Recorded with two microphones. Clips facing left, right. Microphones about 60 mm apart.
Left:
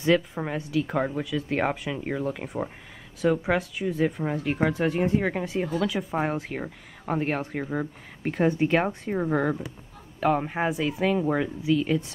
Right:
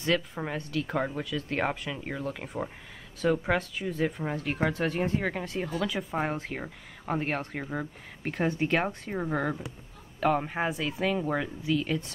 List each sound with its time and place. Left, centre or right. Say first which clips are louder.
0.0 s speech: left 5 dB; centre